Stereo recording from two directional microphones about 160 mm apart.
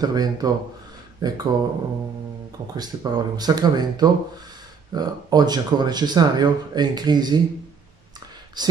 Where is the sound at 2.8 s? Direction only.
25° right (ahead or behind).